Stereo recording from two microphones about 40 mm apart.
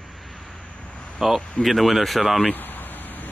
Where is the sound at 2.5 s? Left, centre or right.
Left.